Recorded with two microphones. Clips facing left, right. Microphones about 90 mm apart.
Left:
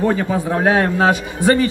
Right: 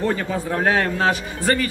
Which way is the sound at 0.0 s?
15° left (ahead or behind).